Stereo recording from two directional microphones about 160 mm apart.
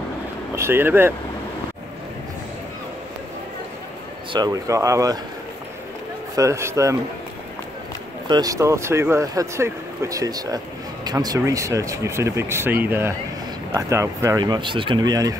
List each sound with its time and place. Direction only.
0.6 s speech: 15° right (ahead or behind)
4.3 s speech: 25° right (ahead or behind)
6.3 s speech: 20° right (ahead or behind)
8.3 s speech: 25° right (ahead or behind)